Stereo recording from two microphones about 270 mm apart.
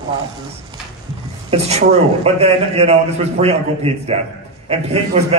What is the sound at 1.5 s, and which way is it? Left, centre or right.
A man's voice, right.